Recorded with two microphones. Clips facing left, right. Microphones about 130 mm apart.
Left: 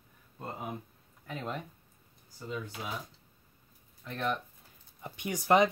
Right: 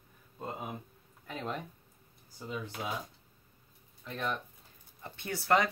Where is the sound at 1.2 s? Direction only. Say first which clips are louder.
Even; 5° left (ahead or behind).